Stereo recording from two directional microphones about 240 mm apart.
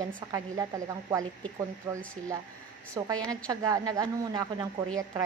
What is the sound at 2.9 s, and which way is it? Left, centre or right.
Speech, centre.